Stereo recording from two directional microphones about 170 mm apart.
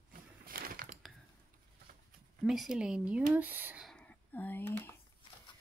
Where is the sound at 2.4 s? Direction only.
5° right (ahead or behind).